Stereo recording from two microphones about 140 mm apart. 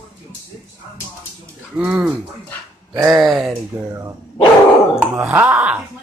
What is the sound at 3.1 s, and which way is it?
Speech, centre (ahead or behind).